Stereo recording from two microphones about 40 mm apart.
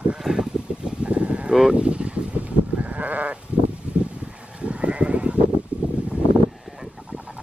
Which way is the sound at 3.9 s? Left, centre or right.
Right.